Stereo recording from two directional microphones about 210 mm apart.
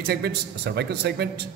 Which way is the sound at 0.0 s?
50° right (ahead or behind).